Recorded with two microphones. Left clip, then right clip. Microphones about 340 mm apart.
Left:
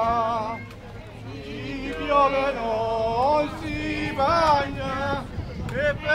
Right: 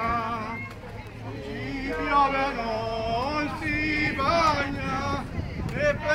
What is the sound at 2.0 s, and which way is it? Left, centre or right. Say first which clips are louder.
Male singing: left 3 dB; centre.